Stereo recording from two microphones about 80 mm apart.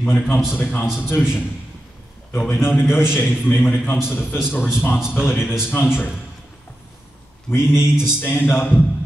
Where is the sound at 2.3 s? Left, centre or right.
Left.